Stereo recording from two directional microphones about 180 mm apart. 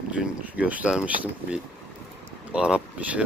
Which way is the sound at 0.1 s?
5° right (ahead or behind).